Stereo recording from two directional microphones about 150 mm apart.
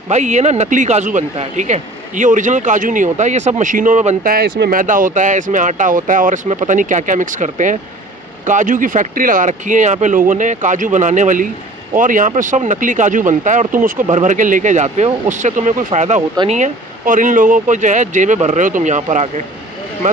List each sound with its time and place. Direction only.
0.1 s speech: 50° right (ahead or behind)
4.2 s speech: 80° right; by 19.4 s 55° right (ahead or behind)